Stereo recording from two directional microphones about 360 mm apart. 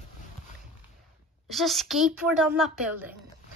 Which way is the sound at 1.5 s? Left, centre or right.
Centre.